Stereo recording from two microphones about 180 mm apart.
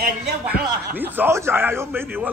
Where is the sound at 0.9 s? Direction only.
10° right (ahead or behind).